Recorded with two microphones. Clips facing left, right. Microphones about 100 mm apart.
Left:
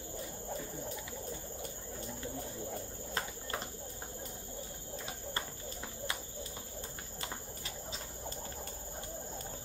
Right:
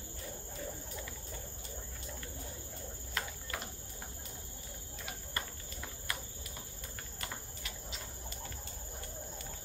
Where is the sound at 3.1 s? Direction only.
35° left (ahead or behind).